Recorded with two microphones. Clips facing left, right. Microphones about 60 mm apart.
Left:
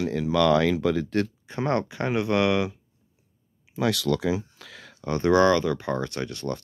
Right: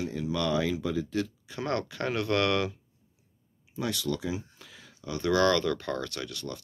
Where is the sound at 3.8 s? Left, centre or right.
Left.